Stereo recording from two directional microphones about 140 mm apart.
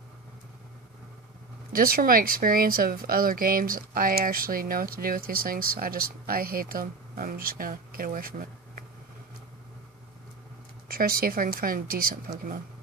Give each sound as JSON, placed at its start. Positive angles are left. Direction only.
{"t": 1.7, "sound": "speech", "side_deg": -90}
{"t": 10.9, "sound": "speech", "side_deg": -90}